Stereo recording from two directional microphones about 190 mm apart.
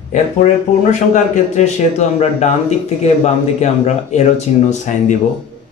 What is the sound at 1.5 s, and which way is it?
Speech, 35° left (ahead or behind).